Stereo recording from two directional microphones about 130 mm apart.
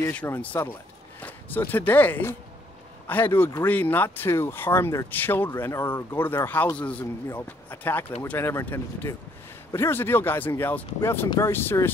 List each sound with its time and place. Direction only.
0.1 s speech: 10° left (ahead or behind)